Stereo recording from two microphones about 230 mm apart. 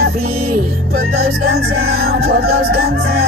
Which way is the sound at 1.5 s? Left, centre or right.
Right.